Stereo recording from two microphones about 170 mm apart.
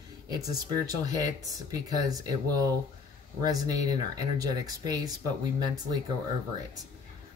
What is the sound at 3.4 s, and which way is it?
Speech, 20° right (ahead or behind).